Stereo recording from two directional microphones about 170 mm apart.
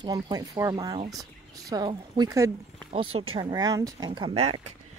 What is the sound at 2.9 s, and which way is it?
Speech, 35° right (ahead or behind).